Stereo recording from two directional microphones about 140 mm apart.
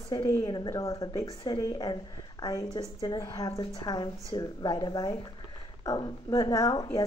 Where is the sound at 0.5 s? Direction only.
25° left (ahead or behind).